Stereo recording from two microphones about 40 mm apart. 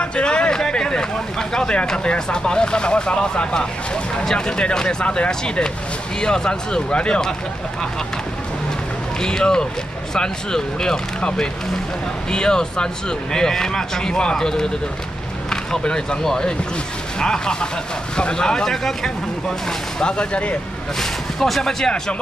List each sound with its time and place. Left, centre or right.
0.0 s a sound: left
1.5 s speech: left
5.0 s speech: left
6.2 s speech: centre
9.2 s speech: centre
11.1 s speech: left
21.0 s speech: centre